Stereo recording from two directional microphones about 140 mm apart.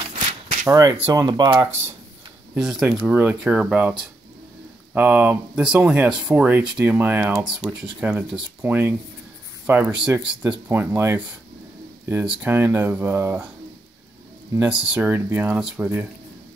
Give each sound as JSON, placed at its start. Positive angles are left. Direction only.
{"t": 0.1, "sound": "shuffling cards", "side_deg": -55}
{"t": 0.7, "sound": "speech", "side_deg": -25}
{"t": 2.5, "sound": "speech", "side_deg": -5}
{"t": 14.7, "sound": "speech", "side_deg": -10}